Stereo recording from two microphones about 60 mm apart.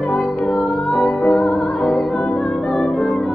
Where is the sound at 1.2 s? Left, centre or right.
Centre.